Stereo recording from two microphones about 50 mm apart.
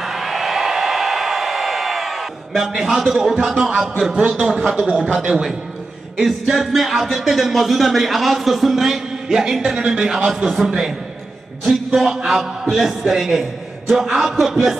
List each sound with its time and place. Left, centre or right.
0.0 s a sound: centre
4.3 s a man's voice: centre
4.6 s speech: right
6.1 s a man's voice: centre